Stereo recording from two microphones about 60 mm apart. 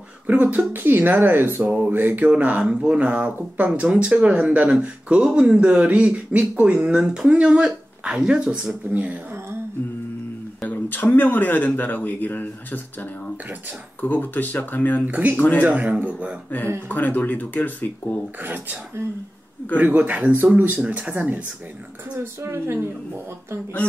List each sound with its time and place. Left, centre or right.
0.3 s speech: right
8.9 s speech: right
10.7 s speech: left
15.0 s speech: right
15.3 s speech: left
15.6 s speech: right
16.4 s speech: left
18.4 s speech: right
19.8 s speech: right
22.2 s speech: right